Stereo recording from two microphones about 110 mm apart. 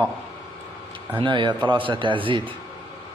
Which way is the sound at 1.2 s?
45° right (ahead or behind).